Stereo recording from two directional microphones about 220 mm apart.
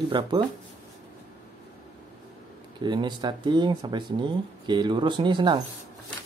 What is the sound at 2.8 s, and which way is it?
Speech, 20° right (ahead or behind).